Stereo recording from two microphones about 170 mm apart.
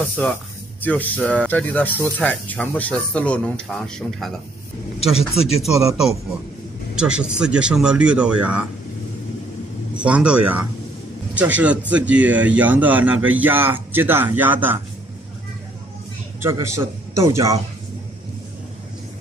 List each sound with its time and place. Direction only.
0.1 s speech: 5° left (ahead or behind)
9.9 s a man's voice: 5° right (ahead or behind)
16.3 s a man's voice: 15° right (ahead or behind)